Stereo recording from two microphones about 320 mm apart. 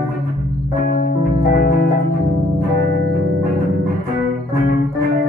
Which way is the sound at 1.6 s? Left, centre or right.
Left.